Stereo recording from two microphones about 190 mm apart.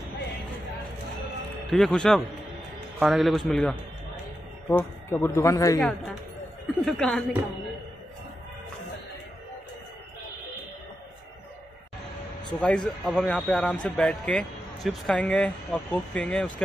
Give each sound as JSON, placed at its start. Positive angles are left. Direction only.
{"t": 1.7, "sound": "speech", "side_deg": 0}
{"t": 5.8, "sound": "speech", "side_deg": 0}
{"t": 12.5, "sound": "speech", "side_deg": 5}